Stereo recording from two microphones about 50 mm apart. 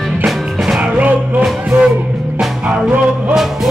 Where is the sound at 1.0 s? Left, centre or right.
Right.